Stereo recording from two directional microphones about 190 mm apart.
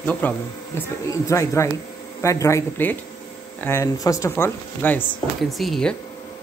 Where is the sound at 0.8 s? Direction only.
15° left (ahead or behind).